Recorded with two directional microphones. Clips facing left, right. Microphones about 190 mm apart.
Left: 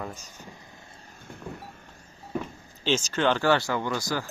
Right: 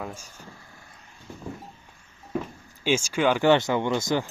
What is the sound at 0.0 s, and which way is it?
Speech, 10° right (ahead or behind).